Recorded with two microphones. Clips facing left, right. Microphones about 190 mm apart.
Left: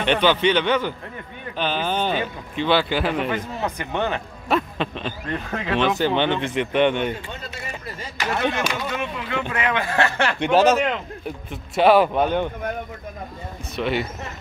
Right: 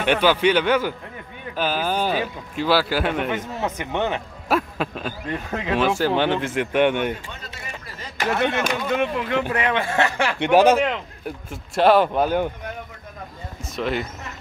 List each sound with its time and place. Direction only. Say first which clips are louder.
0.0 s speech: right 1 dB; 10° right (ahead or behind)
3.6 s speech: right 1 dB; 20° right (ahead or behind)
4.5 s speech: even; 5° right (ahead or behind)
8.2 s speech: right 2 dB; 50° right (ahead or behind)
9.5 s speech: right 1 dB; 35° right (ahead or behind); by 11.3 s 10° right (ahead or behind)
11.7 s speech: left 1 dB; centre (ahead or behind)
13.7 s speech: left 1 dB; centre (ahead or behind)